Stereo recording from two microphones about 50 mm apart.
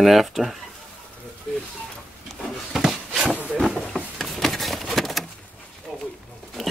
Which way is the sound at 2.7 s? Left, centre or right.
Centre.